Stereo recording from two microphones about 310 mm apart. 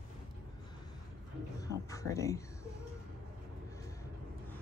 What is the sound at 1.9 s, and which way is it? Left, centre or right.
Speech, centre.